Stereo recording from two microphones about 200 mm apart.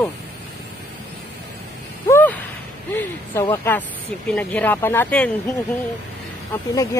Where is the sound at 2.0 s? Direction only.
10° left (ahead or behind).